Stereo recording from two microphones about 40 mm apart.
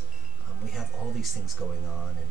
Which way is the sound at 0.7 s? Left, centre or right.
Centre.